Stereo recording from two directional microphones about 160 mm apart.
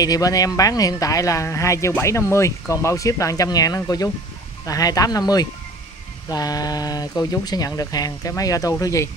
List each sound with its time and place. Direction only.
0.0 s speech: 20° left (ahead or behind)